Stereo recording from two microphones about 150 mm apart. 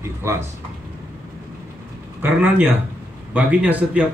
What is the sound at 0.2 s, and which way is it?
Speech, 15° right (ahead or behind).